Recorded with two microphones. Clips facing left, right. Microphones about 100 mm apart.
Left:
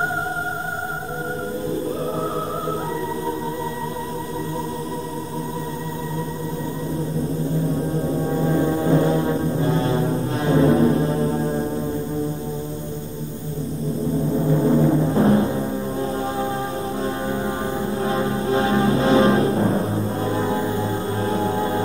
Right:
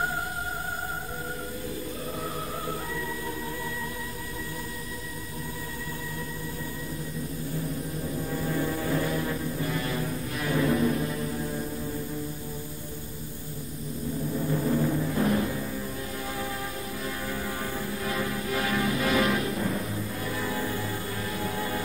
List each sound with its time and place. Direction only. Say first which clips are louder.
7.9 s brass instrument: left 10 dB; 40° left (ahead or behind)
14.3 s music: left 8 dB; 35° left (ahead or behind)
17.8 s music: left 10 dB; 30° left (ahead or behind)